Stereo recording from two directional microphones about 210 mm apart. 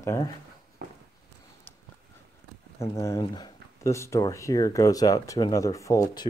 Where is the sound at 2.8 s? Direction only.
15° left (ahead or behind).